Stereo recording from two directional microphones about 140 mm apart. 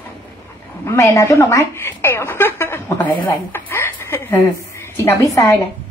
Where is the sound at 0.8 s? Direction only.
20° left (ahead or behind).